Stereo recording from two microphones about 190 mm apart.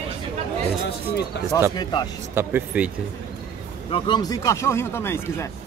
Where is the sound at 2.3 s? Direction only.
10° right (ahead or behind).